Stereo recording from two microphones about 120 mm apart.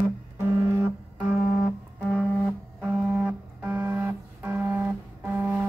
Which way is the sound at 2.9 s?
Centre (ahead or behind).